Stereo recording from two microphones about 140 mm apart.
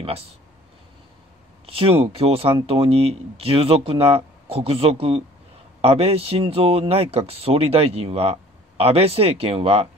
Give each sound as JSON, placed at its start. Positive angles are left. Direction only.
{"t": 1.7, "sound": "speech", "side_deg": -40}